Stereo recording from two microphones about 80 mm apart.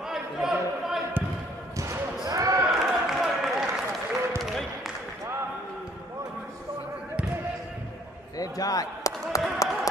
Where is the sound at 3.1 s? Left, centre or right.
Centre.